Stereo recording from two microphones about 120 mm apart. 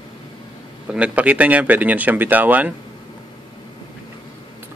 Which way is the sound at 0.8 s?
10° right (ahead or behind).